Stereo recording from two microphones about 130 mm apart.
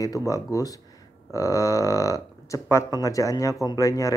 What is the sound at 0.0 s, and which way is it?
Speech, 25° left (ahead or behind).